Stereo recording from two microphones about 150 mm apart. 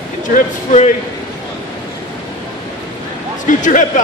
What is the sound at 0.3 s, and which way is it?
Speech, 55° left (ahead or behind).